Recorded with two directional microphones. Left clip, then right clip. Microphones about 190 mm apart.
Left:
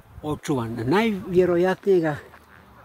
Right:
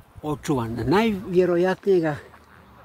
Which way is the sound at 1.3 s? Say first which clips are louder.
Left 1 dB; 5° left (ahead or behind).